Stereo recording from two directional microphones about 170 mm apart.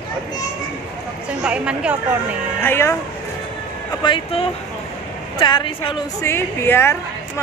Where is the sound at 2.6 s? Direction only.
15° left (ahead or behind).